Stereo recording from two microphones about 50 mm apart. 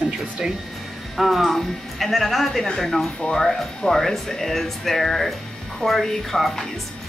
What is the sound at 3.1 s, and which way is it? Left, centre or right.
Speech, centre.